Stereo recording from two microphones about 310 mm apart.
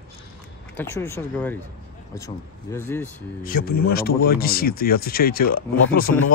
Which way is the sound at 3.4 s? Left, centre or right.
Left.